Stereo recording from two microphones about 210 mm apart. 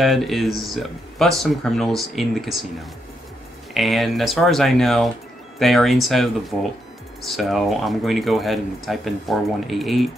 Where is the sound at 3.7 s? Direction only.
Centre (ahead or behind).